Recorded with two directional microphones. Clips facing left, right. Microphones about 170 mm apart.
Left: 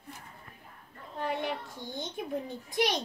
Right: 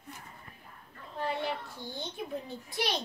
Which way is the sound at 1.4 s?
20° left (ahead or behind).